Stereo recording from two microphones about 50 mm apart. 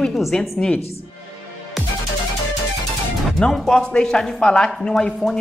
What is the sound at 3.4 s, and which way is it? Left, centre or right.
Speech, centre.